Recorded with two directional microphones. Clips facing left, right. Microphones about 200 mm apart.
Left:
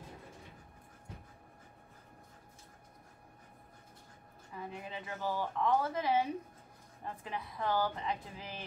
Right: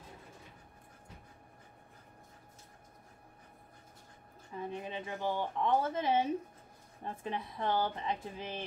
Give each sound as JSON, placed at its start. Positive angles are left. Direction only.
{"t": 4.6, "sound": "speech", "side_deg": -25}